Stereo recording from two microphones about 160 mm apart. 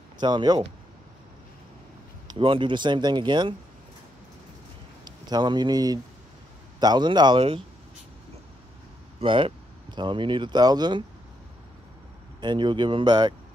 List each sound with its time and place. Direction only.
0.2 s speech: 25° right (ahead or behind)
2.3 s speech: 30° right (ahead or behind)
5.0 s speech: 25° right (ahead or behind)
9.2 s speech: 30° right (ahead or behind)
12.4 s speech: 30° right (ahead or behind)